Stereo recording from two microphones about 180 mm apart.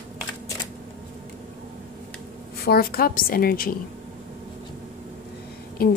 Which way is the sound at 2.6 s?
60° left (ahead or behind).